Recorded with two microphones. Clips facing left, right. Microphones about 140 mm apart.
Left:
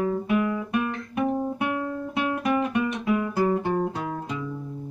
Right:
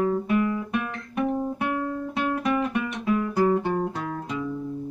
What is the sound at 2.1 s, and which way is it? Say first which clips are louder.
Music: left 1 dB; 10° left (ahead or behind).